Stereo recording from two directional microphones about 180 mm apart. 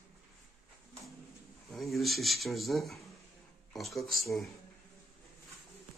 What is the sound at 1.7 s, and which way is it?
Speech, centre (ahead or behind).